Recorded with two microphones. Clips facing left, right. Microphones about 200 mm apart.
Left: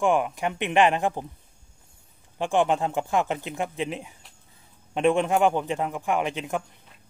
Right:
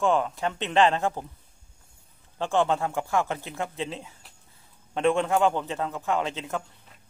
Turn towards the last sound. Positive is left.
turn(degrees=15)  # may be behind; listen again after turning